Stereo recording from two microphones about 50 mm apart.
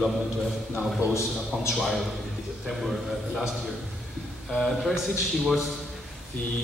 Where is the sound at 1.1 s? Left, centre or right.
Left.